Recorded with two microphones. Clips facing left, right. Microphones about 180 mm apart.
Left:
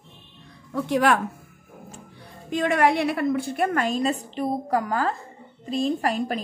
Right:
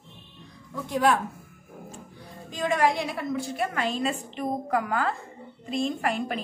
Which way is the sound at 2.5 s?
65° left (ahead or behind).